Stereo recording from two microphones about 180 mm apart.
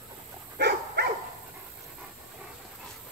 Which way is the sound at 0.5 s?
65° right (ahead or behind).